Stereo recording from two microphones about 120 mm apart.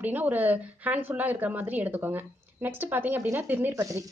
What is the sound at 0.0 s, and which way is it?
A woman's voice, 15° right (ahead or behind).